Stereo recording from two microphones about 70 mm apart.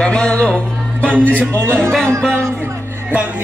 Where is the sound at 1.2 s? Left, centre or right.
Centre.